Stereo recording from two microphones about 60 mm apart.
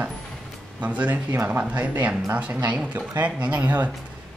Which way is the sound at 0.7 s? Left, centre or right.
Right.